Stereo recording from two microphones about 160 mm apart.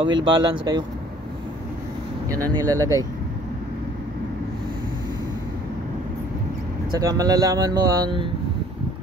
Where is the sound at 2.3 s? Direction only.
20° right (ahead or behind).